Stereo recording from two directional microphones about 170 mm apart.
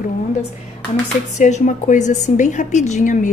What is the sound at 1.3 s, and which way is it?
A woman's voice, 45° left (ahead or behind).